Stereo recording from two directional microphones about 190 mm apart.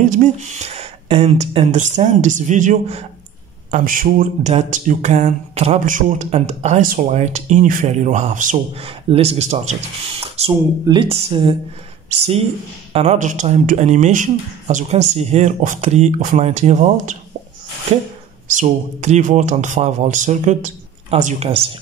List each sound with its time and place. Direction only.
0.0 s speech: 40° right (ahead or behind)
12.9 s speech: 35° right (ahead or behind)
18.5 s speech: 40° right (ahead or behind)